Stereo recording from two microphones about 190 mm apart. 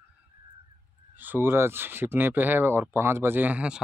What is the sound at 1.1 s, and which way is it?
A man's voice, 10° right (ahead or behind).